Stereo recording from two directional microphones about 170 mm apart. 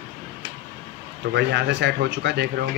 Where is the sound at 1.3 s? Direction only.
90° right.